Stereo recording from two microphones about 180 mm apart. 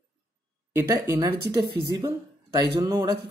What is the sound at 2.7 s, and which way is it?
Speech, 20° right (ahead or behind).